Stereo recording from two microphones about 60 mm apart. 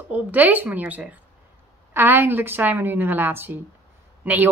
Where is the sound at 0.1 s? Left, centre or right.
Right.